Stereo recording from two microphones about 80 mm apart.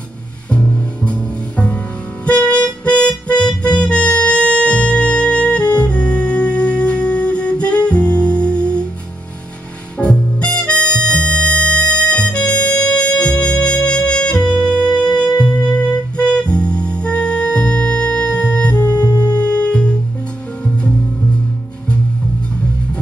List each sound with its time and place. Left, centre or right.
2.2 s music: centre
9.9 s harmonica: centre
15.1 s music: centre
18.9 s music: left
19.3 s music: centre